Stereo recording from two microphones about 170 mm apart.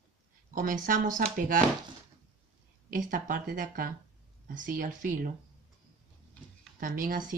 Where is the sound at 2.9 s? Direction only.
50° right (ahead or behind).